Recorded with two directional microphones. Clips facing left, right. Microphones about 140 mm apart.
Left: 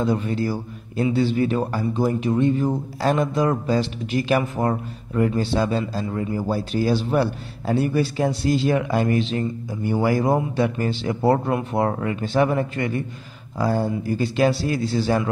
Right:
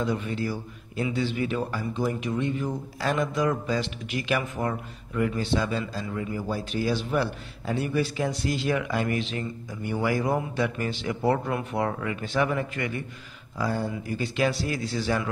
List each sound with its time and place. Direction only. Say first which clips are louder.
0.0 s a man's voice: left 6 dB; 35° left (ahead or behind)